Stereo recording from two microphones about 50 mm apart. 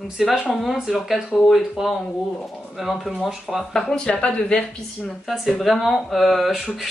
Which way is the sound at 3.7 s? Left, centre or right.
Centre.